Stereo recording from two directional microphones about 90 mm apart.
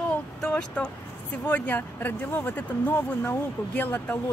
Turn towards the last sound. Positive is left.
turn(degrees=20)  # may be behind; listen again after turning